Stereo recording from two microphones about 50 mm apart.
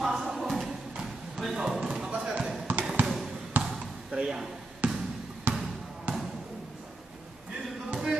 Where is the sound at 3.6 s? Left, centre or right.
Right.